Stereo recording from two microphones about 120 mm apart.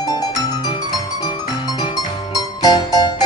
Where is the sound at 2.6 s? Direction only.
35° left (ahead or behind).